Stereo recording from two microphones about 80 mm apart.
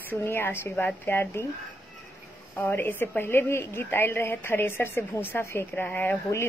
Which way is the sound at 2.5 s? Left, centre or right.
Left.